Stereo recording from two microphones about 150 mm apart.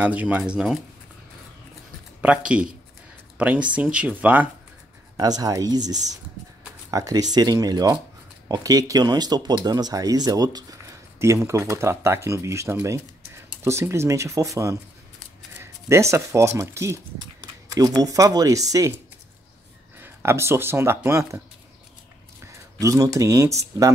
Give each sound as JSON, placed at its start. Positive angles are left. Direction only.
{"t": 0.0, "sound": "speech", "side_deg": -10}
{"t": 2.2, "sound": "speech", "side_deg": -10}
{"t": 5.1, "sound": "speech", "side_deg": -25}
{"t": 20.0, "sound": "speech", "side_deg": -15}
{"t": 22.8, "sound": "speech", "side_deg": -25}